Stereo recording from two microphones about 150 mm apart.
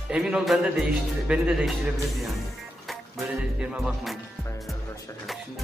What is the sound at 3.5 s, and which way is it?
Speech, 5° right (ahead or behind).